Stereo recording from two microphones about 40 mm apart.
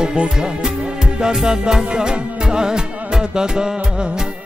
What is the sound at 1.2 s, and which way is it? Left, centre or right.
Music, centre.